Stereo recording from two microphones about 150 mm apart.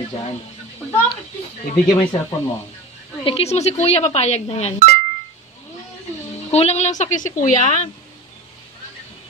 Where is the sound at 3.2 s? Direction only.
40° left (ahead or behind).